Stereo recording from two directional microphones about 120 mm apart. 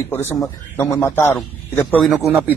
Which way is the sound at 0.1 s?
20° left (ahead or behind).